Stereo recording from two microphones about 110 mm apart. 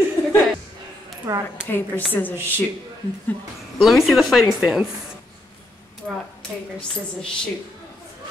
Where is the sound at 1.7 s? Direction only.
15° left (ahead or behind).